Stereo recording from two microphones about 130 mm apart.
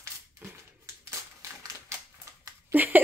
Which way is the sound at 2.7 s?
15° right (ahead or behind).